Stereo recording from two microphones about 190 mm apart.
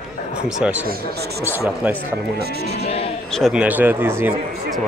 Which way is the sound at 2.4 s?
60° right (ahead or behind).